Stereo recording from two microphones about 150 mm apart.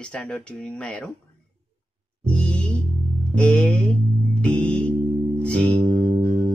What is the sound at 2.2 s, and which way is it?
Music, 5° left (ahead or behind).